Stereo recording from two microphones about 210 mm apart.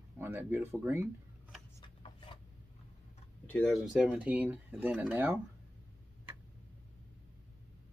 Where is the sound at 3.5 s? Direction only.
5° left (ahead or behind).